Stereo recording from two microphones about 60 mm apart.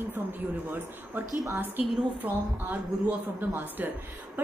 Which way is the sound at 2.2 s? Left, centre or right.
Right.